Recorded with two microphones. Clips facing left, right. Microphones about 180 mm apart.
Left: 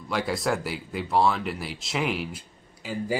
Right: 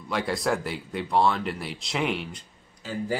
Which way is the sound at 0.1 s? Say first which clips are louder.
Even; centre (ahead or behind).